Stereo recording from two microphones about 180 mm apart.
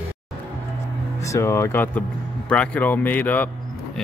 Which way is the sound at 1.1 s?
15° left (ahead or behind).